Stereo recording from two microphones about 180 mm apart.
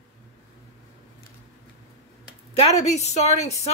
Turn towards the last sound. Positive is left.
turn(degrees=40)  # may be behind; listen again after turning